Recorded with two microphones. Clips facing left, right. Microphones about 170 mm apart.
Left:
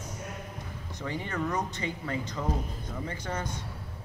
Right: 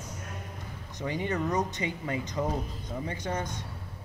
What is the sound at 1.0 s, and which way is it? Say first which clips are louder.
Speech: right 3 dB; 15° right (ahead or behind).